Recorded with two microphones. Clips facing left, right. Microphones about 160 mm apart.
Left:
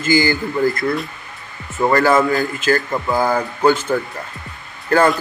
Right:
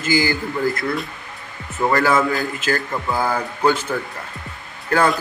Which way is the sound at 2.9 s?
15° left (ahead or behind).